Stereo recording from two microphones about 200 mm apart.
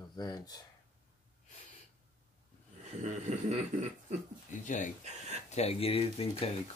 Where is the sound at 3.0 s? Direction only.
35° right (ahead or behind).